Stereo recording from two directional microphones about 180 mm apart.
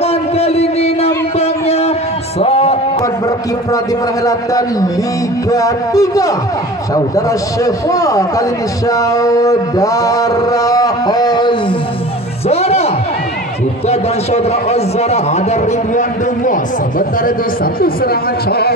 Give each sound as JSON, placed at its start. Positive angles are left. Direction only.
{"t": 0.0, "sound": "a sound", "side_deg": 35}
{"t": 2.3, "sound": "music", "side_deg": 35}
{"t": 3.7, "sound": "a man's voice", "side_deg": 20}
{"t": 12.4, "sound": "music", "side_deg": 35}
{"t": 13.8, "sound": "a man's voice", "side_deg": 35}
{"t": 17.7, "sound": "speech", "side_deg": 55}